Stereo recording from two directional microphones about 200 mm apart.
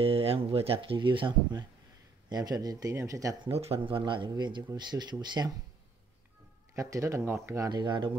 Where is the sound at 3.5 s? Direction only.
30° right (ahead or behind).